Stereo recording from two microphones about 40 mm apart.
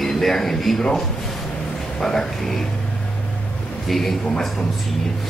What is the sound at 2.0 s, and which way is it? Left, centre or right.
Speech, centre.